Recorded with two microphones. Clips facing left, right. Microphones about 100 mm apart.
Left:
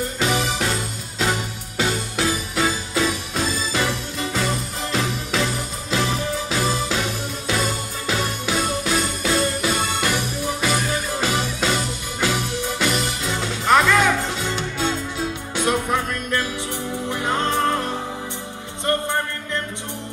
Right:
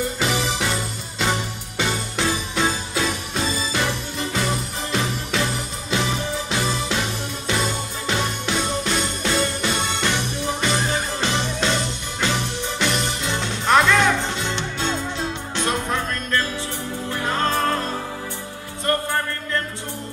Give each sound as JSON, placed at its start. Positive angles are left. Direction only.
{"t": 0.2, "sound": "music", "side_deg": 0}